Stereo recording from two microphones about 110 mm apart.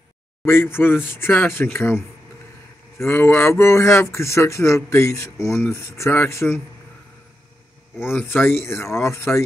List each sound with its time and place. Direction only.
0.5 s a man's voice: 20° left (ahead or behind)
3.1 s a man's voice: 20° left (ahead or behind)
8.0 s a man's voice: 20° left (ahead or behind)